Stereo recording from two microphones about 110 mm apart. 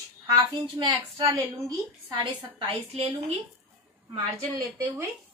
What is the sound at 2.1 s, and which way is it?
Speech, 50° right (ahead or behind).